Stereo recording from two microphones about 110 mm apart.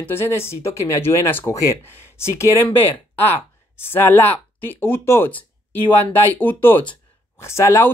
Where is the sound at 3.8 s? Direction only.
20° left (ahead or behind).